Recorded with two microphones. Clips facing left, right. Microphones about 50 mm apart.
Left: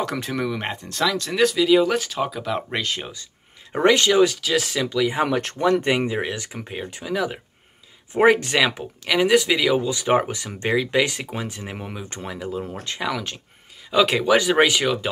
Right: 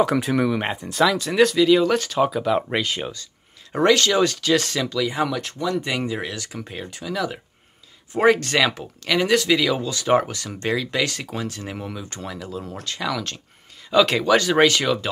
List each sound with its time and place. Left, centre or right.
0.0 s speech: centre
3.7 s speech: centre
4.8 s speech: centre
5.2 s speech: left
5.9 s speech: left